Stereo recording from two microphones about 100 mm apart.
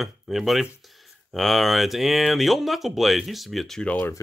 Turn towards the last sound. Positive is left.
turn(degrees=15)  # may be behind; listen again after turning